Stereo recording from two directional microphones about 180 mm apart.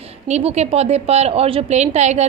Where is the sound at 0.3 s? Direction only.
35° right (ahead or behind).